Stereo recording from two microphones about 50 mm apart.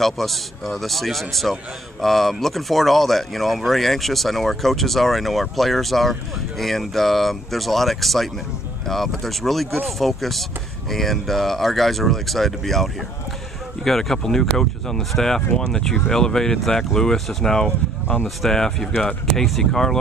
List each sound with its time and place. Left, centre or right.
0.0 s speech: centre